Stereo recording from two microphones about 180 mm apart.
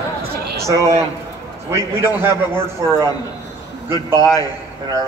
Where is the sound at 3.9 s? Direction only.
20° left (ahead or behind).